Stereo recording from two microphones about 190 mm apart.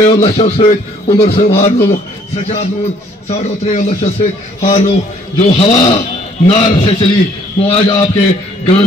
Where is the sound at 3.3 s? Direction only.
35° left (ahead or behind).